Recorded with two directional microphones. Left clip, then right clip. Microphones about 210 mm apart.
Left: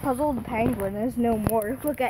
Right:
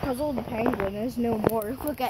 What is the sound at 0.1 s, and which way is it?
Speech, centre (ahead or behind).